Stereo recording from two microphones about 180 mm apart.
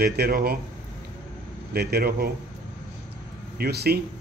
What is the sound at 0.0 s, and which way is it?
Speech, 60° right (ahead or behind).